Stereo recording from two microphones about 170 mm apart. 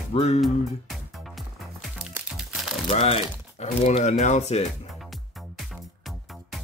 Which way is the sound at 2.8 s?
35° left (ahead or behind).